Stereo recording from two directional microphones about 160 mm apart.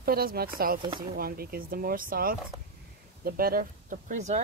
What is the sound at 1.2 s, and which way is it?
Speech, 70° right (ahead or behind).